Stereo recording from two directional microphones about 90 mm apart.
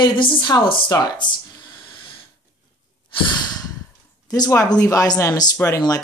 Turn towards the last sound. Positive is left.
turn(degrees=35)  # may be behind; listen again after turning